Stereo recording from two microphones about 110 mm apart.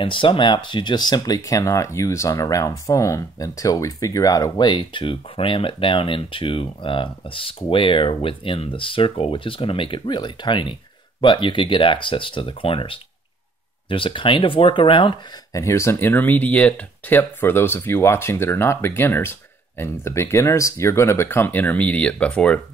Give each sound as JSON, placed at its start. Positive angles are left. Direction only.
{"t": 0.0, "sound": "speech", "side_deg": 50}
{"t": 15.5, "sound": "speech", "side_deg": 25}